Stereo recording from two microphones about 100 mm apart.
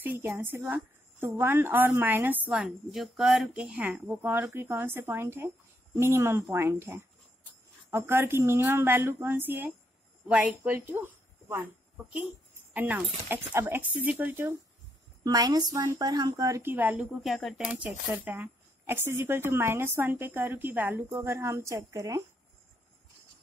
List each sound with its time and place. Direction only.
0.4 s a woman's voice: 20° right (ahead or behind)
12.7 s a woman's voice: 15° right (ahead or behind)
15.2 s speech: 40° right (ahead or behind)
16.6 s speech: 20° right (ahead or behind)
17.2 s speech: centre (ahead or behind)
17.6 s a woman's voice: 15° right (ahead or behind); by 22.2 s 35° right (ahead or behind)